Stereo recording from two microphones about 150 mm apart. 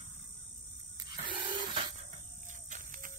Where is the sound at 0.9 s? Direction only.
30° right (ahead or behind).